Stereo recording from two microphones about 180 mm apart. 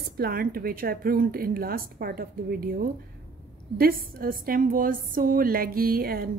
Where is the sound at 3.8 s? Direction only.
55° right (ahead or behind).